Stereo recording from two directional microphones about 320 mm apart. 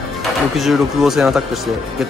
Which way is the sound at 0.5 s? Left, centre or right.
Centre.